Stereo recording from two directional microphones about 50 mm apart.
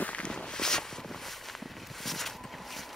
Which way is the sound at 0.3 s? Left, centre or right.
Centre.